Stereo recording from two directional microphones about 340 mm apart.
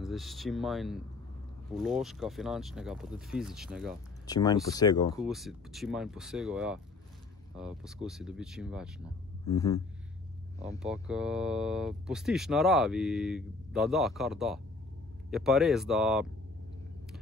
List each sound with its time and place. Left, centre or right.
0.0 s speech: centre
4.3 s speech: centre
5.1 s speech: centre
9.5 s speech: centre
10.8 s speech: centre